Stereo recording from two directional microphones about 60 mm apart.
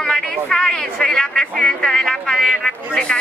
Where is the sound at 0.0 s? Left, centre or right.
Centre.